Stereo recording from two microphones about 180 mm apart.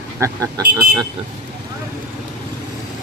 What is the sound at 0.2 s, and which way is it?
Speech, 15° right (ahead or behind).